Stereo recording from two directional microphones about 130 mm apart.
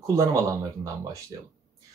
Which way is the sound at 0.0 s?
25° right (ahead or behind).